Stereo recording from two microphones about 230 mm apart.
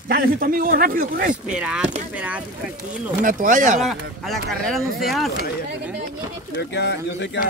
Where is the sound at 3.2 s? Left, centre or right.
Right.